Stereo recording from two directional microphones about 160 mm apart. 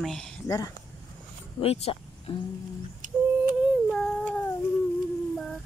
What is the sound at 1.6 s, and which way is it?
Speech, 35° left (ahead or behind).